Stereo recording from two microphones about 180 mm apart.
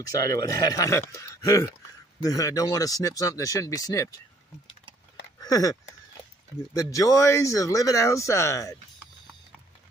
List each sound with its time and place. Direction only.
0.1 s speech: 20° left (ahead or behind)
5.4 s speech: 20° left (ahead or behind)